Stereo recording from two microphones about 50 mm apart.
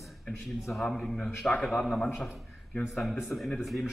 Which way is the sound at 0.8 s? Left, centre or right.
Centre.